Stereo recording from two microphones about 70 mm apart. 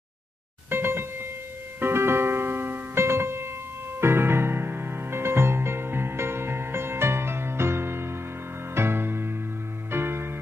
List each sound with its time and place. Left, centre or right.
0.7 s music: right